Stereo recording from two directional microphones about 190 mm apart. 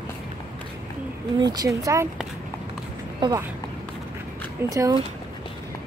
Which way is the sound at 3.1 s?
20° right (ahead or behind).